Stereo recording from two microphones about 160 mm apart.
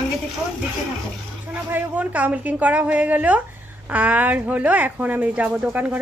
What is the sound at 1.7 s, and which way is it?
Speech, 10° right (ahead or behind).